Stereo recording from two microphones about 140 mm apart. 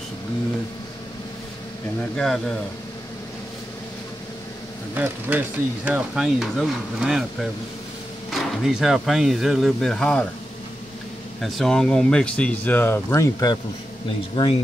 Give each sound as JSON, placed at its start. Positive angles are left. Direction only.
{"t": 2.0, "sound": "speech", "side_deg": 5}
{"t": 4.9, "sound": "speech", "side_deg": -10}
{"t": 11.4, "sound": "speech", "side_deg": 0}
{"t": 14.3, "sound": "speech", "side_deg": 40}